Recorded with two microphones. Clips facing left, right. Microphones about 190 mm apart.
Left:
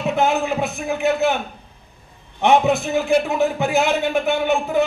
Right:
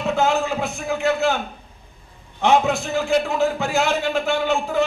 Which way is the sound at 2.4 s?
15° left (ahead or behind).